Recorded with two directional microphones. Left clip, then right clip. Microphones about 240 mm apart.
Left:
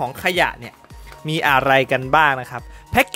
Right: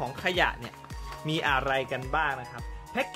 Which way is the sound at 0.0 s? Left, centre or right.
Left.